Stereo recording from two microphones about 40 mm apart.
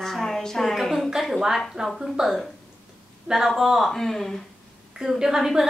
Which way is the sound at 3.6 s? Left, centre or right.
Centre.